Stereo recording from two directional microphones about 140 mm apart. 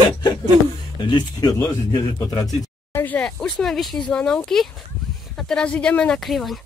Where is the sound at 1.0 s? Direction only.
35° left (ahead or behind).